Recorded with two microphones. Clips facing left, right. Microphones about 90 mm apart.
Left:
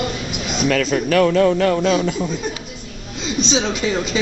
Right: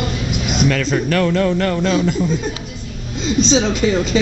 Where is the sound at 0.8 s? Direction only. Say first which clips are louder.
Left 1 dB; 55° left (ahead or behind); by 2.0 s 75° left (ahead or behind).